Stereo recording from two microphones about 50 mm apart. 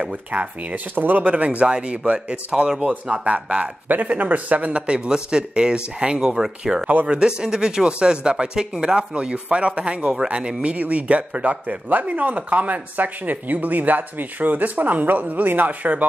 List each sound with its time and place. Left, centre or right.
0.0 s speech: right